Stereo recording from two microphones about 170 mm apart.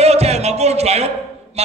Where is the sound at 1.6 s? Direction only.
40° right (ahead or behind).